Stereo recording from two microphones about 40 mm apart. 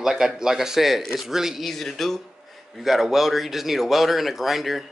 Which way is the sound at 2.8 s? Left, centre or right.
Centre.